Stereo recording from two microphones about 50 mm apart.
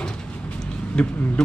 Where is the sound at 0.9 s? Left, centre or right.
Centre.